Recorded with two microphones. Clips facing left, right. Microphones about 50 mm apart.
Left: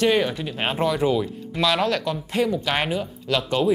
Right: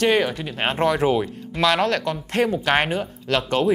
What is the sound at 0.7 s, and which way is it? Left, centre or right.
Speech, right.